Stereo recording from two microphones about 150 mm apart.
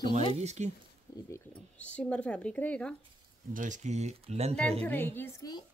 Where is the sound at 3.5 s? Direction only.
60° right (ahead or behind).